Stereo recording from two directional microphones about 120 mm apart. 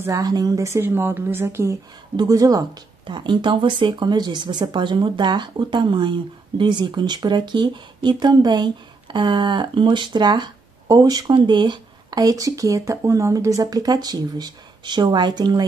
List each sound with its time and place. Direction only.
0.0 s speech: 30° right (ahead or behind)